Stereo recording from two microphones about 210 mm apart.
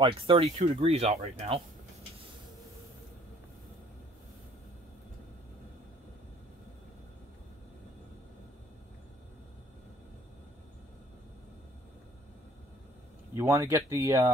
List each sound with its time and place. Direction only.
0.0 s speech: 25° right (ahead or behind)
13.3 s speech: 15° right (ahead or behind)